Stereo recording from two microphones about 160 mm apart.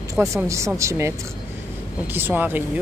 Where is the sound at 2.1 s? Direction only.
10° right (ahead or behind).